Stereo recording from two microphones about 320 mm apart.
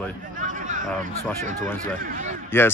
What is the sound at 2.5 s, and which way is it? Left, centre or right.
Speech, centre.